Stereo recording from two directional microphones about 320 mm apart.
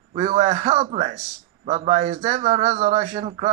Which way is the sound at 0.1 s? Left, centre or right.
Centre.